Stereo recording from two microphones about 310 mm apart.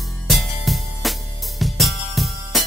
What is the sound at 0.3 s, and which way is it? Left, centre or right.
Music, centre.